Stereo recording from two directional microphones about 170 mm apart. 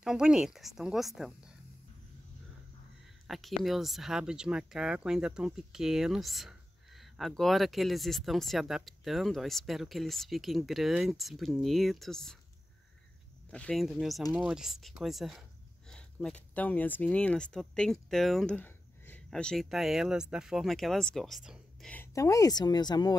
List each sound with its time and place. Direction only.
0.0 s speech: 5° right (ahead or behind)
3.3 s speech: centre (ahead or behind)
13.5 s speech: 5° left (ahead or behind)
21.9 s a woman's voice: 15° left (ahead or behind)